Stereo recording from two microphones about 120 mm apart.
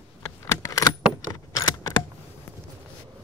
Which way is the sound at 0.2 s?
25° left (ahead or behind).